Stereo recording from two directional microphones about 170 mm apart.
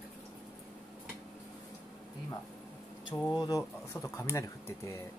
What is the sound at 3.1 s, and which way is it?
Speech, 20° left (ahead or behind).